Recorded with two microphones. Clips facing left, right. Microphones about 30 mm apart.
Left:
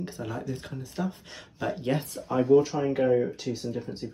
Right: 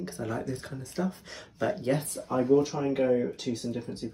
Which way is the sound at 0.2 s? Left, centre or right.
Centre.